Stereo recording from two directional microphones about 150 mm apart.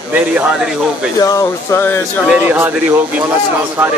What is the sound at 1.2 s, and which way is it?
Speech, 20° left (ahead or behind).